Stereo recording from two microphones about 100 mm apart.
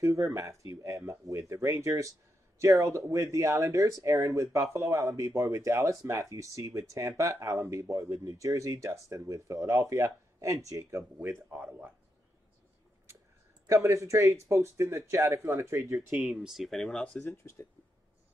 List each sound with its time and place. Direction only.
0.0 s speech: 30° right (ahead or behind)
11.5 s speech: 15° right (ahead or behind)
13.7 s speech: 30° right (ahead or behind)
16.1 s speech: 5° right (ahead or behind); by 17.3 s 10° left (ahead or behind)
17.3 s speech: 30° left (ahead or behind)